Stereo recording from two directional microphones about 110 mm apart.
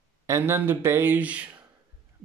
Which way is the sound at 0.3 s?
20° right (ahead or behind).